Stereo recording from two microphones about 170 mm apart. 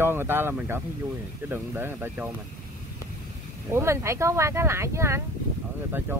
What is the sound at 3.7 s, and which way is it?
Speech, 15° right (ahead or behind).